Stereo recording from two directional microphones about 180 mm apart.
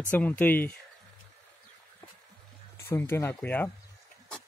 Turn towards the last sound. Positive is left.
turn(degrees=10)  # may be behind; listen again after turning